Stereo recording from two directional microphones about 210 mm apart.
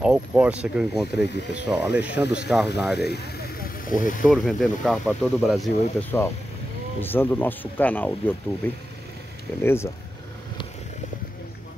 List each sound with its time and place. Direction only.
0.0 s speech: 5° right (ahead or behind)
1.2 s speech: 55° left (ahead or behind)
1.5 s speech: 5° right (ahead or behind)
3.1 s vehicle: 45° left (ahead or behind)
4.2 s speech: centre (ahead or behind)